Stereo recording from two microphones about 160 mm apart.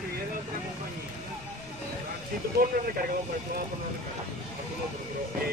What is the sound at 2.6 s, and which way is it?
Speech, 65° right (ahead or behind).